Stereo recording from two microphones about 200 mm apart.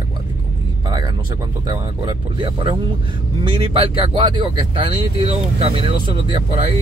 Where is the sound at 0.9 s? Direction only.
20° right (ahead or behind).